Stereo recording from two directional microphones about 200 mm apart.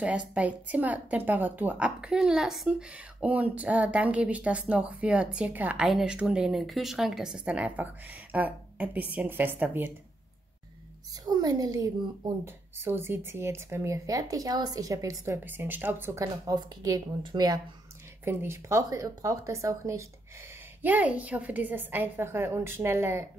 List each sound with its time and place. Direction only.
0.0 s a woman's voice: 5° right (ahead or behind)
11.2 s a woman's voice: 20° right (ahead or behind)
12.7 s a woman's voice: 10° right (ahead or behind)